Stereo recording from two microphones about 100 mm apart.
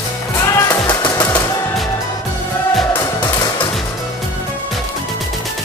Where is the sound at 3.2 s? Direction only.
40° left (ahead or behind).